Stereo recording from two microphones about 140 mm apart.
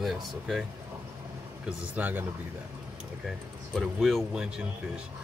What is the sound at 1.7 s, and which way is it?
Speech, 10° right (ahead or behind).